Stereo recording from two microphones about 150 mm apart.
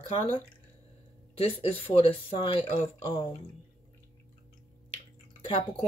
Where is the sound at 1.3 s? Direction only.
40° left (ahead or behind).